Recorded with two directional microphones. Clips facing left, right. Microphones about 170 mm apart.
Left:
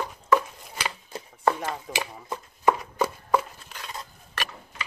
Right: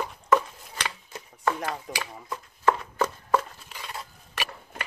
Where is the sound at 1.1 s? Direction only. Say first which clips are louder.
Left 4 dB; 30° left (ahead or behind).